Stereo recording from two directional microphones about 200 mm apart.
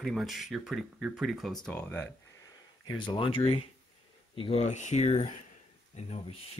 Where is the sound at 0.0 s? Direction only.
Centre (ahead or behind).